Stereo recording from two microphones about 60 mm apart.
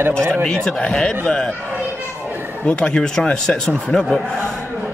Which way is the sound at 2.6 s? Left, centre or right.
Centre.